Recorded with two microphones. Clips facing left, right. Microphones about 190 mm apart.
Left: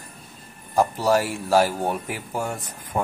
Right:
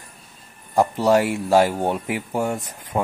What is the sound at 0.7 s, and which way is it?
Speech, 20° right (ahead or behind).